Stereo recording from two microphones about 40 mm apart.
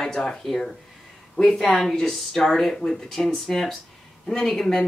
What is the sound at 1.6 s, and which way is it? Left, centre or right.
Speech, centre.